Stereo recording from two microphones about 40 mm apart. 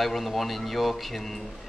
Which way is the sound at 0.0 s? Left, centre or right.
Centre.